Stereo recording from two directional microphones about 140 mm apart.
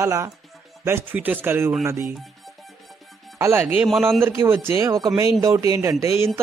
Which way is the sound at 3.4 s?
15° right (ahead or behind).